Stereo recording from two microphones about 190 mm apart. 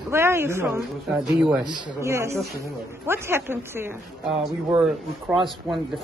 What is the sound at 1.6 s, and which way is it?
Speech, 20° right (ahead or behind).